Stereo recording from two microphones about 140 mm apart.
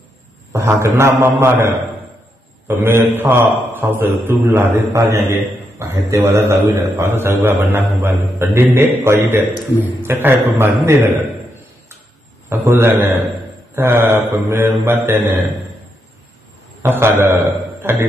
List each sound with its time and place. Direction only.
0.5 s a man's voice: 20° right (ahead or behind)
2.7 s a man's voice: 15° right (ahead or behind)
12.4 s a man's voice: 15° right (ahead or behind)
16.8 s a man's voice: 15° right (ahead or behind)